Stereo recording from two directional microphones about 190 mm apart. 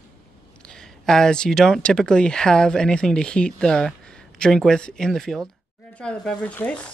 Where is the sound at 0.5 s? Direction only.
5° left (ahead or behind).